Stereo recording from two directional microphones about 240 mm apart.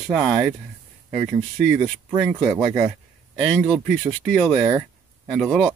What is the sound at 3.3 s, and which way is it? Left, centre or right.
Speech, centre.